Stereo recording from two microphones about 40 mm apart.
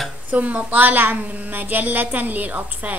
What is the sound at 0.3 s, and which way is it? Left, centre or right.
A woman's voice, right.